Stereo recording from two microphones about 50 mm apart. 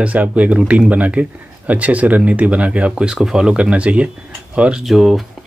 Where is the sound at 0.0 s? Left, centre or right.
Right.